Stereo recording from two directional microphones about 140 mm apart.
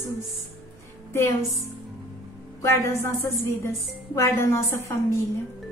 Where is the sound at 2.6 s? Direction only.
20° left (ahead or behind).